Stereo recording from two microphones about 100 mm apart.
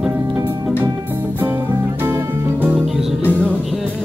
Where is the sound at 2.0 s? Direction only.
25° right (ahead or behind).